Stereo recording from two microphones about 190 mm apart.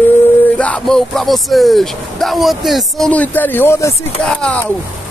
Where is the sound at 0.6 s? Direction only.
5° left (ahead or behind).